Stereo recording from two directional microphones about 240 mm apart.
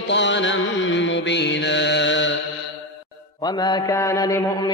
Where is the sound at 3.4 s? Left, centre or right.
Centre.